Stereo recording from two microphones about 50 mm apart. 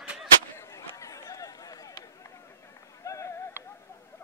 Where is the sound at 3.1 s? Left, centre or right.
Left.